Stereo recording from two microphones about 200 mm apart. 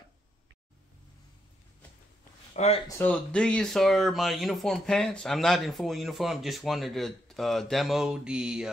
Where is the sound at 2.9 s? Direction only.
10° left (ahead or behind).